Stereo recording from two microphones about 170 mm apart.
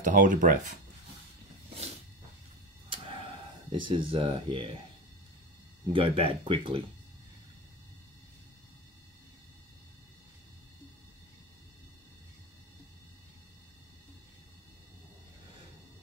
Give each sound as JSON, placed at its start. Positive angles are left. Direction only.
{"t": 0.0, "sound": "speech", "side_deg": -50}
{"t": 2.9, "sound": "a sound", "side_deg": -30}
{"t": 3.8, "sound": "speech", "side_deg": -30}
{"t": 5.9, "sound": "speech", "side_deg": -30}